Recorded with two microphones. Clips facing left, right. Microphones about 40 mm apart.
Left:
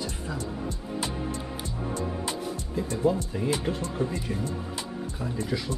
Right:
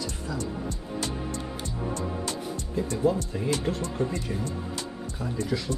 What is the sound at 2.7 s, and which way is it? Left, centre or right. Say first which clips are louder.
Speech: right 1 dB; centre.